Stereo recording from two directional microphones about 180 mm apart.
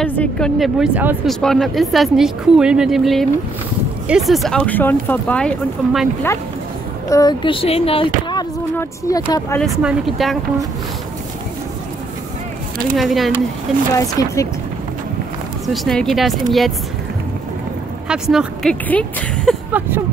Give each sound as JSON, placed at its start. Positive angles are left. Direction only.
{"t": 0.0, "sound": "speech", "side_deg": 5}
{"t": 7.1, "sound": "speech", "side_deg": 20}
{"t": 9.6, "sound": "speech", "side_deg": -5}
{"t": 12.9, "sound": "speech", "side_deg": 0}
{"t": 13.9, "sound": "speech", "side_deg": 20}
{"t": 15.6, "sound": "speech", "side_deg": 0}
{"t": 18.0, "sound": "speech", "side_deg": -5}